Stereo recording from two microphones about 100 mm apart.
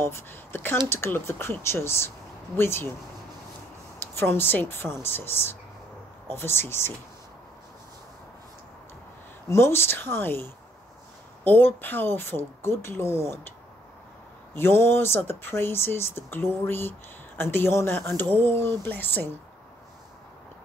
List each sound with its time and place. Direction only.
0.0 s speech: 25° left (ahead or behind)
4.1 s speech: 20° left (ahead or behind)
9.5 s speech: 25° left (ahead or behind)
14.5 s speech: 25° left (ahead or behind)